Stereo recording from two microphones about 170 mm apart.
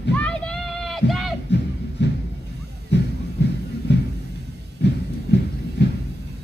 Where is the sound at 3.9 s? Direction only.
90° left.